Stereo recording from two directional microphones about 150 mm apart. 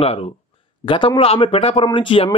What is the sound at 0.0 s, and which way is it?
Speech, 40° left (ahead or behind).